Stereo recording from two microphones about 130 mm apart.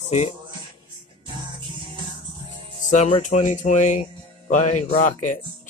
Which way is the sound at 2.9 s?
60° left (ahead or behind).